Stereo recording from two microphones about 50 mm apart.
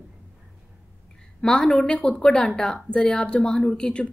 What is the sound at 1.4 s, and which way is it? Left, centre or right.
A woman's voice, centre.